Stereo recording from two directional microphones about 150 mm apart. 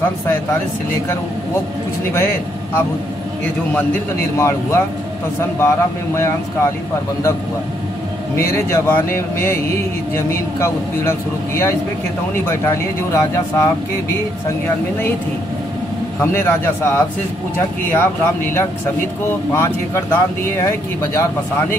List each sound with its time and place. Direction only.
2.1 s speech: 15° left (ahead or behind)
8.4 s speech: 20° left (ahead or behind)
13.1 s speech: 20° left (ahead or behind)
16.2 s speech: 15° left (ahead or behind)